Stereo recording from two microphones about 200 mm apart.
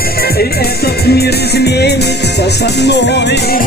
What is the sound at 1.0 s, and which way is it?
Music, 55° left (ahead or behind).